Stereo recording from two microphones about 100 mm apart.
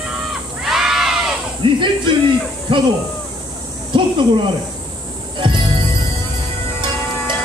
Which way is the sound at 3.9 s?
55° right (ahead or behind).